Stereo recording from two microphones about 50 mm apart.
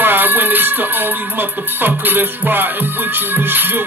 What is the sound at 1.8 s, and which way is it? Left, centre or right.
Music, right.